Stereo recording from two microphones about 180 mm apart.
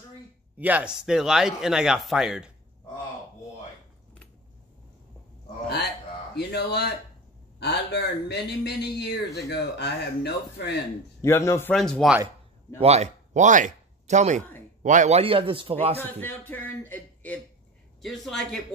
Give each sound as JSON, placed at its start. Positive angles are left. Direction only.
{"t": 0.6, "sound": "speech", "side_deg": -10}
{"t": 6.3, "sound": "a man's voice", "side_deg": 65}
{"t": 11.1, "sound": "speech", "side_deg": 15}
{"t": 11.7, "sound": "speech", "side_deg": 5}
{"t": 12.8, "sound": "a man's voice", "side_deg": -35}
{"t": 16.0, "sound": "speech", "side_deg": 10}